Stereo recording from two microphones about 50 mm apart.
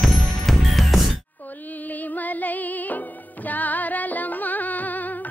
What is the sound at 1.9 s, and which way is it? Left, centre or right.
Music, left.